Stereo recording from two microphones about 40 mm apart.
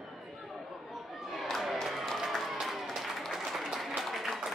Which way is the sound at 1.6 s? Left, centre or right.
Centre.